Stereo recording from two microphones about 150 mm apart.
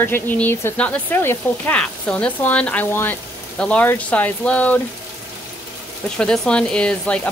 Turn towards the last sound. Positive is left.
turn(degrees=5)  # may be behind; listen again after turning